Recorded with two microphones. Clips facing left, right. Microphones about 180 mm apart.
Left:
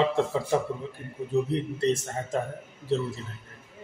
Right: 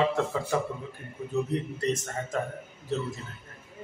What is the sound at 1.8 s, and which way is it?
Speech, 30° left (ahead or behind).